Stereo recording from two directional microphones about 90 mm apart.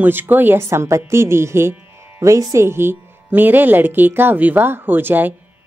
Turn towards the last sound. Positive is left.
turn(degrees=-20)  # may be behind; listen again after turning